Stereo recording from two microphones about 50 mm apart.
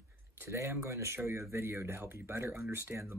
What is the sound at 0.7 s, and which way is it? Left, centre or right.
Speech, right.